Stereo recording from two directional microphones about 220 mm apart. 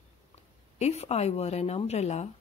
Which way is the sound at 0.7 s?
30° left (ahead or behind).